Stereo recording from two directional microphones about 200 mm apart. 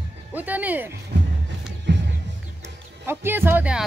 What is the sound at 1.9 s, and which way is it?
Music, 65° right (ahead or behind).